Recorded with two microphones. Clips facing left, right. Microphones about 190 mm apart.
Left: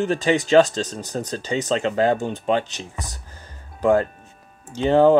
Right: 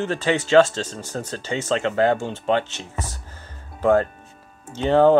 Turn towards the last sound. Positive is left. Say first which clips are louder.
# left 1 dB
turn(degrees=15)  # may be behind; listen again after turning